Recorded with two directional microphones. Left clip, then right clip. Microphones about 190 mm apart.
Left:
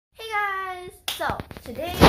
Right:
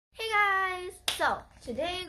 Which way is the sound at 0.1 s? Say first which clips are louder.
Even; 10° right (ahead or behind).